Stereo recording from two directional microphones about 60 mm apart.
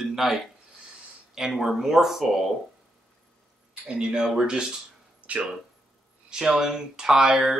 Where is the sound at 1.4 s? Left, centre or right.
Centre.